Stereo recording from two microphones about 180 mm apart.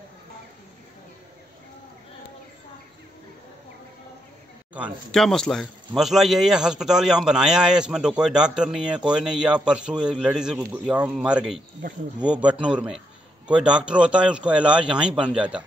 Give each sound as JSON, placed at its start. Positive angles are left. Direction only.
{"t": 4.7, "sound": "a man's voice", "side_deg": -5}